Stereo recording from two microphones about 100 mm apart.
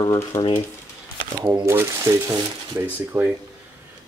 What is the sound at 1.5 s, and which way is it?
Speech, 25° right (ahead or behind).